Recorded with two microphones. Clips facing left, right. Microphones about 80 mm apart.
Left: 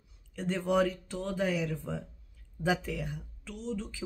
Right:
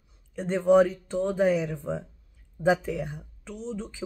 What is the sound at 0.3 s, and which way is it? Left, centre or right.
Speech, right.